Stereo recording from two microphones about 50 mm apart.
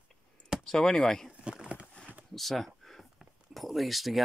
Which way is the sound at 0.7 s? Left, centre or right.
Centre.